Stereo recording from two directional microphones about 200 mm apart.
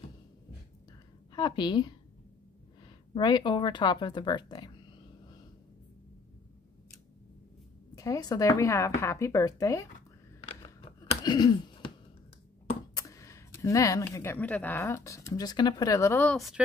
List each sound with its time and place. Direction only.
1.3 s a woman's voice: 20° left (ahead or behind)
7.9 s speech: 15° left (ahead or behind)
10.4 s a sound: 25° left (ahead or behind)
12.9 s speech: 15° left (ahead or behind); by 16.6 s centre (ahead or behind)